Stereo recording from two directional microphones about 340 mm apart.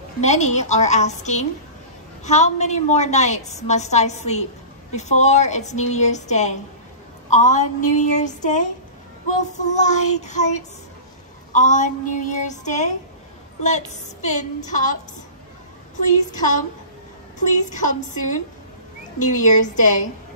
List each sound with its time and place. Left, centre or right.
0.2 s a woman's voice: centre
16.3 s a woman's voice: left
19.1 s a woman's voice: left